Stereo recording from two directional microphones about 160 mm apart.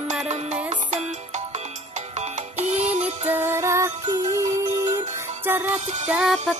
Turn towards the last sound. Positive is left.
turn(degrees=-5)  # may be behind; listen again after turning